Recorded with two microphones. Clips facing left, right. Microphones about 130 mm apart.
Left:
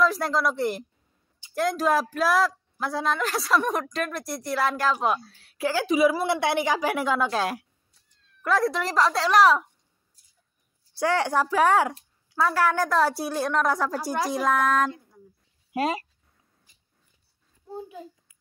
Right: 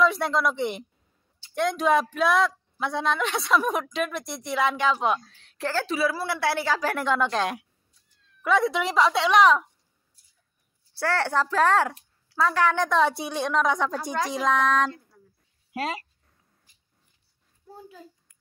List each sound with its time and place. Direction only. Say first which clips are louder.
0.0 s a woman's voice: right 1 dB; centre (ahead or behind)
11.0 s a woman's voice: left 2 dB; 15° left (ahead or behind)
15.7 s speech: left 4 dB; 25° left (ahead or behind)
18.3 s a sound: even; 5° left (ahead or behind)